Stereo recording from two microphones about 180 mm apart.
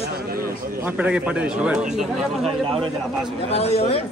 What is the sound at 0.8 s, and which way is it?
A man's voice, 10° right (ahead or behind).